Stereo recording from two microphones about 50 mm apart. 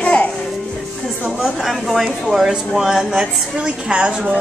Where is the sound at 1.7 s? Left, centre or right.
Centre.